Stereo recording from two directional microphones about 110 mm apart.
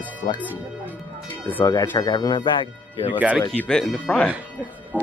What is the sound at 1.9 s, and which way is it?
Speech, 35° left (ahead or behind).